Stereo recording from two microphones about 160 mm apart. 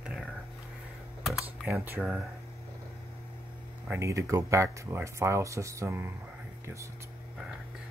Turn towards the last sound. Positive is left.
turn(degrees=-15)  # may be behind; listen again after turning